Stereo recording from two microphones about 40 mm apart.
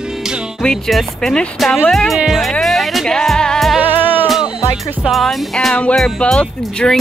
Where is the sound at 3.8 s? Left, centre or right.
Right.